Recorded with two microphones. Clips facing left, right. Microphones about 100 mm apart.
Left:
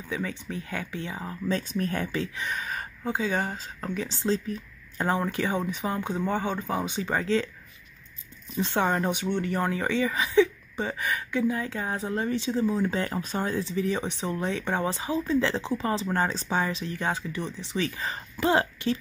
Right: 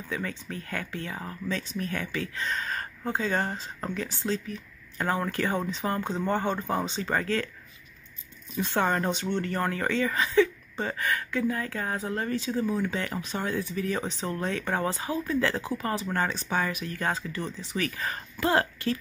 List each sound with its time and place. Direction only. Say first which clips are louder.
0.1 s speech: left 2 dB; 15° left (ahead or behind)
1.5 s speech: left 4 dB; 45° left (ahead or behind)
2.3 s speech: right 1 dB; 15° left (ahead or behind)
3.9 s speech: left 4 dB; 20° left (ahead or behind)
8.5 s speech: left 1 dB; 20° left (ahead or behind)